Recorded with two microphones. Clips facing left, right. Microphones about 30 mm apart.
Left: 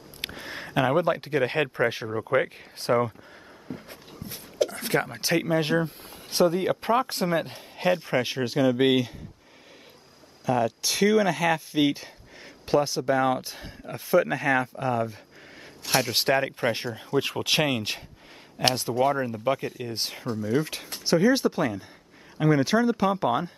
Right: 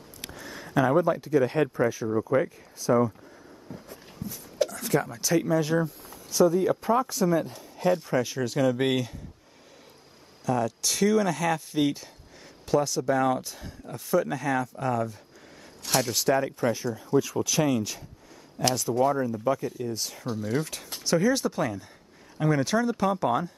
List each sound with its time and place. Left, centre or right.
0.2 s speech: left
2.3 s speech: left
2.8 s speech: left
3.7 s a sound: left
4.6 s speech: left
8.5 s speech: centre
10.4 s speech: left
16.1 s speech: left
18.6 s speech: left
20.6 s speech: left